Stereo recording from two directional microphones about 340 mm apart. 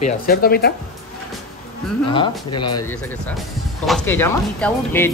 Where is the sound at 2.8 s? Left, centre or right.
Centre.